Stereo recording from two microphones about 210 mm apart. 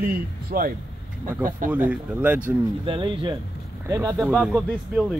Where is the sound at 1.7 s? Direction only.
5° right (ahead or behind).